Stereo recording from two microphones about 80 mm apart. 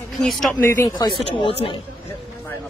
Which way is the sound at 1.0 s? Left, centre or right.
Left.